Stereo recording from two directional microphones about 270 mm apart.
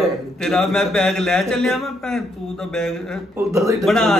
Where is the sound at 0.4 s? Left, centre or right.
Centre.